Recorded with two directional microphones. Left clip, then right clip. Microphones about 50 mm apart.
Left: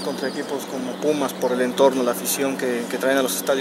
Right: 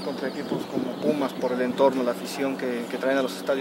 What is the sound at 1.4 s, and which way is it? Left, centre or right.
Speech, left.